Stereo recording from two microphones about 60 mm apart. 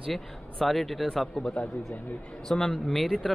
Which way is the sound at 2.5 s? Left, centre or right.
Centre.